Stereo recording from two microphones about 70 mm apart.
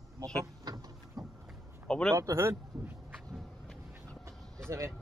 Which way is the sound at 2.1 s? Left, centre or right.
Right.